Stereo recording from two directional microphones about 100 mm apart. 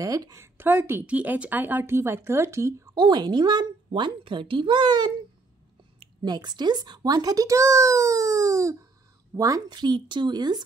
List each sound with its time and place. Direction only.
0.0 s a woman's voice: 35° right (ahead or behind)
3.0 s a child's voice: 50° right (ahead or behind)
6.2 s a child's voice: 45° right (ahead or behind)